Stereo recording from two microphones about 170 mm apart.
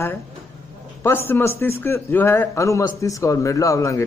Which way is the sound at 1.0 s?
15° left (ahead or behind).